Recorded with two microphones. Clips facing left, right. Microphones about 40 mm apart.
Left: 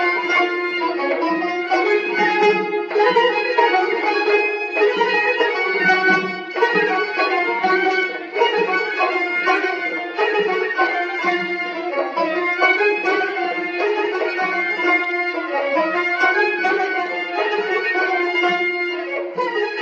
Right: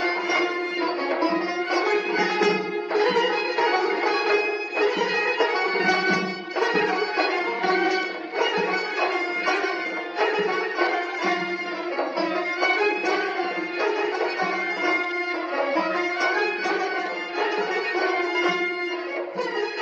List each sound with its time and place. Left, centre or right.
0.0 s music: left
15.7 s music: left
17.9 s music: left